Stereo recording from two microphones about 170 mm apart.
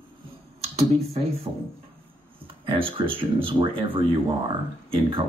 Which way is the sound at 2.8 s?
30° right (ahead or behind).